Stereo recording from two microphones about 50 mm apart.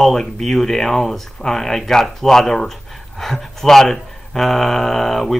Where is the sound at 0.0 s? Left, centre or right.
Centre.